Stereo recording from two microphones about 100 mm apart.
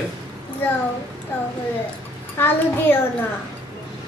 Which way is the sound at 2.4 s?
25° left (ahead or behind).